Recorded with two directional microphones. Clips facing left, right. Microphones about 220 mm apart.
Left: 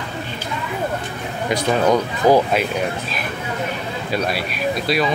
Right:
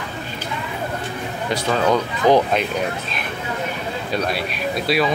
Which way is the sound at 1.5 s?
15° left (ahead or behind).